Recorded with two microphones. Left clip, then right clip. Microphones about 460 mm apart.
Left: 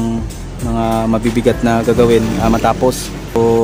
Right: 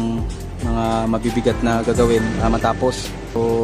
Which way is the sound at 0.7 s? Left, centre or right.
Right.